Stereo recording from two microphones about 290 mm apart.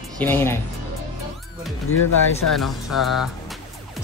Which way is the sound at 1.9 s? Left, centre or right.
Left.